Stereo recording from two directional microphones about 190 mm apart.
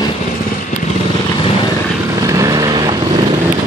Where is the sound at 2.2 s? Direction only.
15° right (ahead or behind).